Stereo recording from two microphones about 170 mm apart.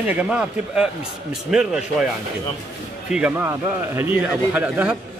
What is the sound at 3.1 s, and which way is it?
A man's voice, 10° right (ahead or behind).